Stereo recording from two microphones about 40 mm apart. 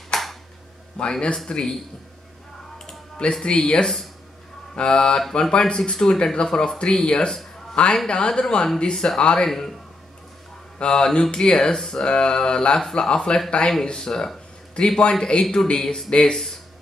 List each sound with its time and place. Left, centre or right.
0.1 s a sound: centre
1.0 s speech: left
2.9 s a sound: left
3.4 s speech: left
9.5 s a man's voice: centre
10.8 s speech: left